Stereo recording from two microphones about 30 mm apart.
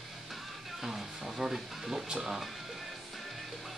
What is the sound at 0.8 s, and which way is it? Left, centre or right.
Music, centre.